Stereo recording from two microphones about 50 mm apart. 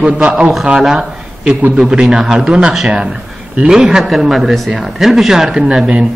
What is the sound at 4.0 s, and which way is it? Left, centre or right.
A woman's voice, centre.